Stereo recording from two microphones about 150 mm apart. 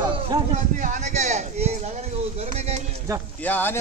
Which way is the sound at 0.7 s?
60° right (ahead or behind).